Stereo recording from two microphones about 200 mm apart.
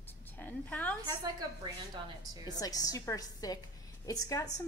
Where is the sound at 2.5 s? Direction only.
20° left (ahead or behind).